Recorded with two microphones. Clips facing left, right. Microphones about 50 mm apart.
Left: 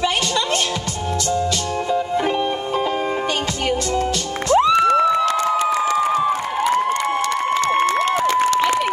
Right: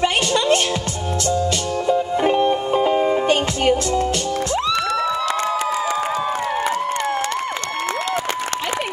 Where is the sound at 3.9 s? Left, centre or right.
Left.